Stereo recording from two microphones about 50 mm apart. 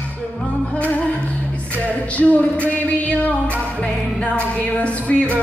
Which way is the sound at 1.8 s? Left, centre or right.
Left.